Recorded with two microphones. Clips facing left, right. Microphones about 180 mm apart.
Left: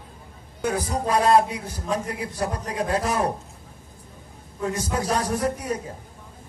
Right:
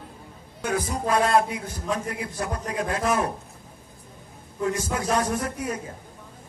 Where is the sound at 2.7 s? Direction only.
35° left (ahead or behind).